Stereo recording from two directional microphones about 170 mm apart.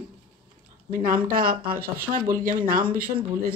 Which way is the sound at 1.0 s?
55° right (ahead or behind).